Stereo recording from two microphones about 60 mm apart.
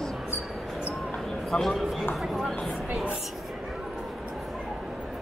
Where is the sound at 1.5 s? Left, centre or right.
Centre.